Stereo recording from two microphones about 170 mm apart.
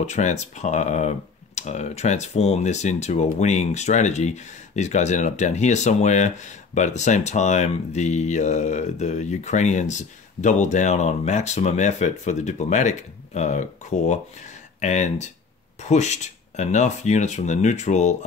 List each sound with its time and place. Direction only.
0.0 s speech: 45° left (ahead or behind)